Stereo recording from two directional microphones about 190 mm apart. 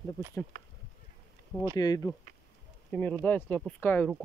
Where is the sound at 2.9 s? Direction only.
5° left (ahead or behind).